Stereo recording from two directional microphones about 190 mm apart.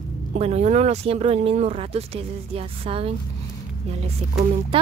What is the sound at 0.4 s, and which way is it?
Speech, 35° right (ahead or behind).